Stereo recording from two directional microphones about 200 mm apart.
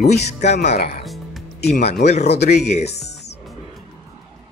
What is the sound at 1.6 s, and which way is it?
Speech, 55° left (ahead or behind).